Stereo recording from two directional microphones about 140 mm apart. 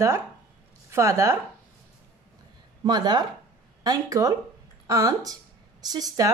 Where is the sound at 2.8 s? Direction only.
30° right (ahead or behind).